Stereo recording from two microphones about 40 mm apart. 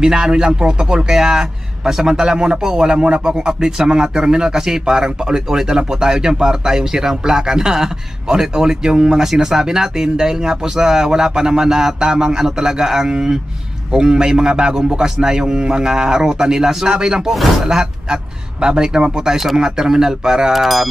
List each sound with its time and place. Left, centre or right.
0.0 s a man's voice: centre
20.5 s wind chime: centre